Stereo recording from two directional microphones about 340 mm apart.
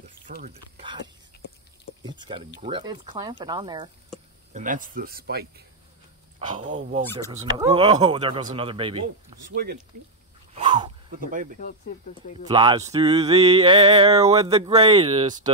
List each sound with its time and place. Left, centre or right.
0.3 s speech: right
0.8 s whispering: centre
2.0 s speech: centre
2.6 s music: centre
4.6 s speech: right
6.4 s music: centre
9.5 s speech: right
10.5 s wheeze: centre
11.1 s speech: right
12.4 s music: centre